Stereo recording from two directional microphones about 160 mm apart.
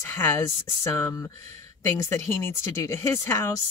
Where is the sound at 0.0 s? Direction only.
15° left (ahead or behind).